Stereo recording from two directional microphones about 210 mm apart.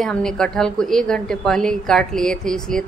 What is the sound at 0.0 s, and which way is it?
A woman's voice, centre (ahead or behind).